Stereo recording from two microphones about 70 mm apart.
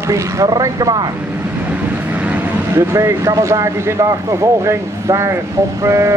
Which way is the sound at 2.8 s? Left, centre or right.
Right.